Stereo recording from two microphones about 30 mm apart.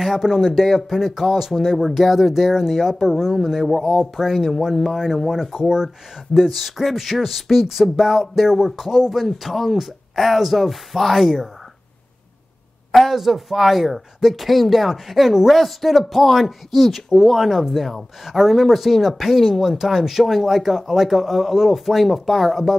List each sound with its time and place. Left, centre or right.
0.0 s speech: centre
3.6 s speech: centre
4.2 s speech: centre
4.9 s speech: centre
6.5 s speech: centre
12.9 s speech: centre